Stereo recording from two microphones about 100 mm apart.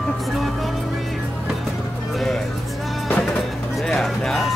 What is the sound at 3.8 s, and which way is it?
Music, 5° left (ahead or behind).